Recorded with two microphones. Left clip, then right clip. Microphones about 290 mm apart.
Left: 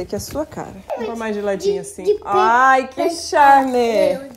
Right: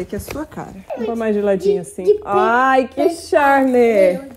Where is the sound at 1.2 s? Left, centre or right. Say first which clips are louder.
Right 7 dB; centre.